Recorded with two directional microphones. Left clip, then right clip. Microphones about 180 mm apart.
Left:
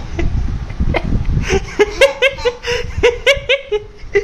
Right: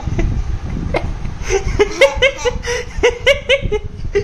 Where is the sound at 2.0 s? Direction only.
Centre (ahead or behind).